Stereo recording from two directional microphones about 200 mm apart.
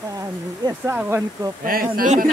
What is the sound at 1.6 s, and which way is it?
Speech, 45° right (ahead or behind).